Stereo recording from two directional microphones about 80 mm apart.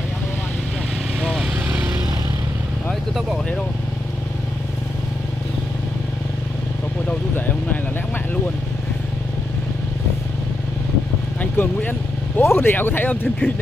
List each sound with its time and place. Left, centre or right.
1.2 s vehicle: centre
7.1 s vehicle: left
11.5 s vehicle: left
12.4 s speech: left